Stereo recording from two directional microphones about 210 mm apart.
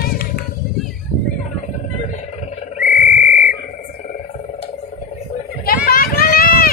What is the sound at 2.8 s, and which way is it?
Frog, 40° left (ahead or behind).